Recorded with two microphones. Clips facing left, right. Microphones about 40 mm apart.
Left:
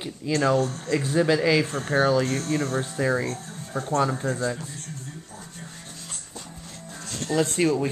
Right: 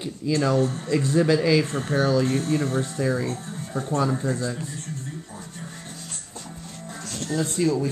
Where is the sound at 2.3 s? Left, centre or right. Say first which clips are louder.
Right 2 dB; centre.